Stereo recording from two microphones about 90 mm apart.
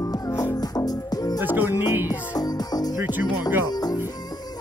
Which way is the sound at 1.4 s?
20° right (ahead or behind).